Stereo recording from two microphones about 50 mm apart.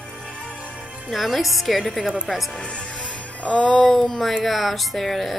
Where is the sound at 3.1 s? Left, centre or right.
Left.